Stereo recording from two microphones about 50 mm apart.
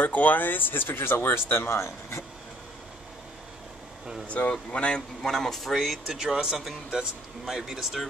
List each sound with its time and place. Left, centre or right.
0.0 s speech: left
4.3 s speech: left
5.2 s speech: centre
6.0 s speech: centre